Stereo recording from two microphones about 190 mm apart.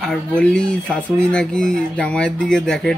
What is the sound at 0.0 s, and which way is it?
Speech, 5° left (ahead or behind).